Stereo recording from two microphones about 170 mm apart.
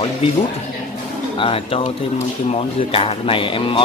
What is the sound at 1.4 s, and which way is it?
Speech, 35° left (ahead or behind).